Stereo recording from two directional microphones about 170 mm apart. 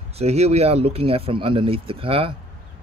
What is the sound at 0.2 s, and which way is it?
Speech, 40° right (ahead or behind).